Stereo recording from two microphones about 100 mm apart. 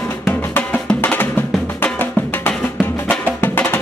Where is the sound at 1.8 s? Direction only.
20° left (ahead or behind).